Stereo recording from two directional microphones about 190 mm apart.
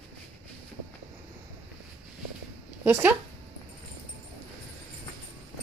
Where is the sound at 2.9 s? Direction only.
5° right (ahead or behind).